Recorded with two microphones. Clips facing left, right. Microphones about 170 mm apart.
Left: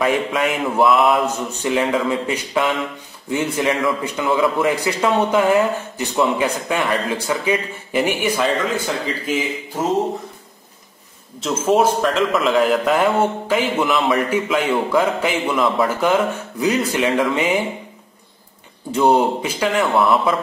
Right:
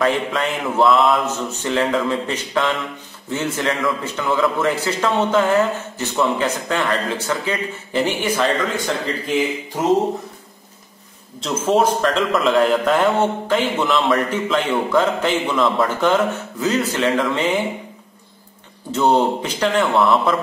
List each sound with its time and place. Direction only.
0.0 s a man's voice: 10° left (ahead or behind)
11.4 s a man's voice: 5° left (ahead or behind)
18.9 s a man's voice: 10° left (ahead or behind)